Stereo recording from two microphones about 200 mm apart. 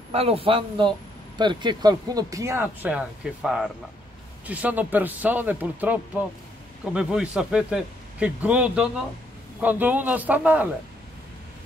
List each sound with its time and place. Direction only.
0.1 s a man's voice: 30° right (ahead or behind); by 10.7 s 10° right (ahead or behind)